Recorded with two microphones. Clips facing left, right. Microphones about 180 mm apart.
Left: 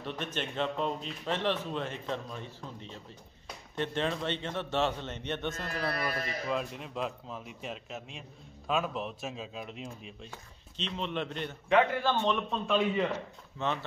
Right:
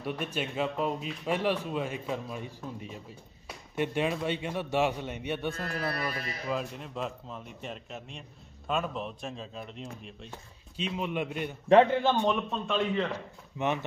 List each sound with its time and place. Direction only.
0.0 s a man's voice: 10° right (ahead or behind)
10.8 s a man's voice: 10° right (ahead or behind)
11.7 s a man's voice: 25° right (ahead or behind)
12.3 s speech: centre (ahead or behind)
13.1 s a man's voice: 15° right (ahead or behind)